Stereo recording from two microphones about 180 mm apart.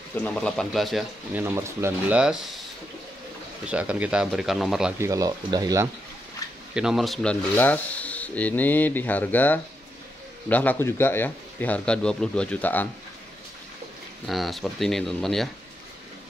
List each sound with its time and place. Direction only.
0.1 s speech: 5° left (ahead or behind)
1.4 s speech: 15° right (ahead or behind)
3.6 s speech: 5° right (ahead or behind)
4.9 s speech: 15° right (ahead or behind)
6.7 s speech: 5° right (ahead or behind)
14.2 s speech: centre (ahead or behind)